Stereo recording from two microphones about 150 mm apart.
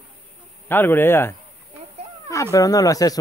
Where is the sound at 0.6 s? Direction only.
15° left (ahead or behind).